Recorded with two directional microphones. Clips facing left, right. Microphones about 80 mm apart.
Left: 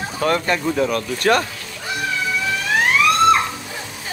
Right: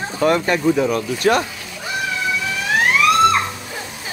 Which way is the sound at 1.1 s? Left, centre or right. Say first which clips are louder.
Even; left.